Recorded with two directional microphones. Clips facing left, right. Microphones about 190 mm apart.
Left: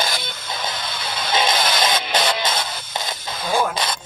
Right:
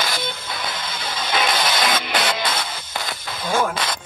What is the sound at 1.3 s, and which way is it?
Music, 25° left (ahead or behind).